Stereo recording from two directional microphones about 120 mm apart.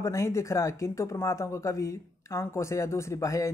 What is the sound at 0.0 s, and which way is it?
Speech, 25° left (ahead or behind).